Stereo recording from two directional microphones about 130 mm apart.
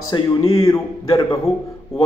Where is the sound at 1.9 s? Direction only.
50° left (ahead or behind).